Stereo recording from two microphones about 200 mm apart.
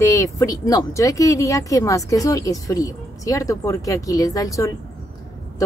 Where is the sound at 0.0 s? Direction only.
15° left (ahead or behind).